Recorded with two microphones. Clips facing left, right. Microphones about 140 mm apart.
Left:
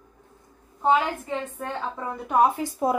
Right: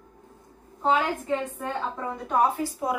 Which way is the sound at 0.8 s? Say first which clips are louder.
Left 2 dB; 10° left (ahead or behind).